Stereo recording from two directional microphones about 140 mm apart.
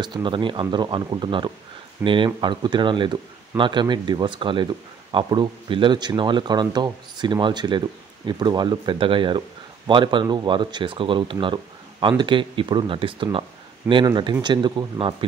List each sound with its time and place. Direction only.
0.0 s speech: 35° right (ahead or behind)